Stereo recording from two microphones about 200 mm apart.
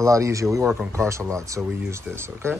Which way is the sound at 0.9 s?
15° right (ahead or behind).